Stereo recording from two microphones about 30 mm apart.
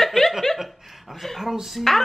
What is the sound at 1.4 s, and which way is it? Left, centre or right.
Speech, centre.